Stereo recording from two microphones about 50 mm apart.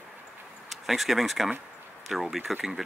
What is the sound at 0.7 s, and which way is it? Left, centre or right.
Speech, centre.